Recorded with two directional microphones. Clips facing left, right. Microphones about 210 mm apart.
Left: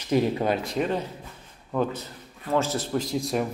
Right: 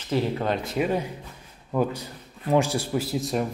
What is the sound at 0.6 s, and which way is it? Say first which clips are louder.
A man's voice: right 1 dB; 5° right (ahead or behind).